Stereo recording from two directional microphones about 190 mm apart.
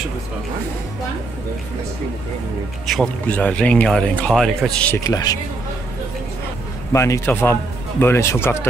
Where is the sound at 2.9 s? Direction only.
5° left (ahead or behind).